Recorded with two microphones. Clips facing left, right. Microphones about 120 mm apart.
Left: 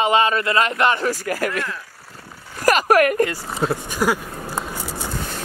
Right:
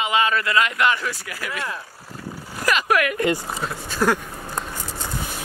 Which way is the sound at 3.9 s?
10° left (ahead or behind).